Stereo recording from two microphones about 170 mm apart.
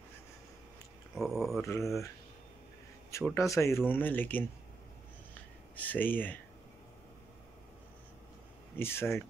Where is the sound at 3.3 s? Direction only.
15° left (ahead or behind).